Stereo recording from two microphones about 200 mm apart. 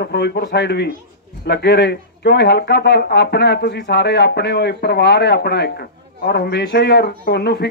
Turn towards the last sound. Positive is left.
turn(degrees=55)  # may be behind; listen again after turning